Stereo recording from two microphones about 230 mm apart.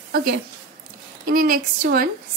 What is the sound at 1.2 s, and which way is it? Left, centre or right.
Speech, right.